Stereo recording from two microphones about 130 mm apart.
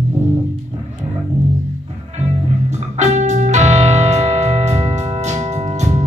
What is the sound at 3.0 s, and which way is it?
Music, 65° right (ahead or behind).